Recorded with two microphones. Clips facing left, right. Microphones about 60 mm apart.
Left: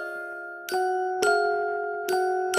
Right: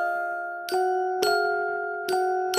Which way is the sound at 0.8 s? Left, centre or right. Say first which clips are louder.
Even; centre.